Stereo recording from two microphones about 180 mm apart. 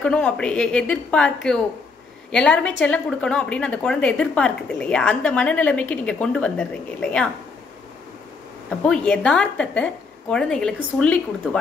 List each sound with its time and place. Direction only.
0.0 s a woman's voice: 5° left (ahead or behind)
8.6 s a woman's voice: 5° left (ahead or behind)